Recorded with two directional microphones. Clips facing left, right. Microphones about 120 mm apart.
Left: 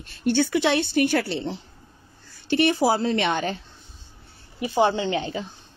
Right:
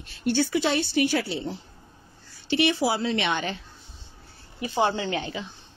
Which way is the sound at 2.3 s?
45° left (ahead or behind).